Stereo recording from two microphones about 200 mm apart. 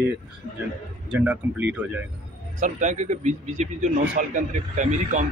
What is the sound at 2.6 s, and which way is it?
Speech, 35° right (ahead or behind).